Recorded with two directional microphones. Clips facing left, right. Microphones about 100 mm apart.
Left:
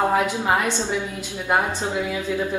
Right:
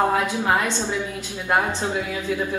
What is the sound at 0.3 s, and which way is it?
A woman's voice, 15° left (ahead or behind).